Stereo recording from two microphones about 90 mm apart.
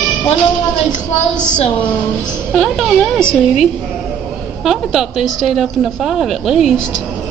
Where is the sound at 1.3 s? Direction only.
15° left (ahead or behind).